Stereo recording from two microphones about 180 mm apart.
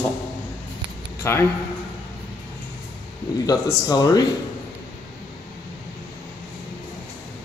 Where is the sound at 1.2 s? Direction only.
15° left (ahead or behind).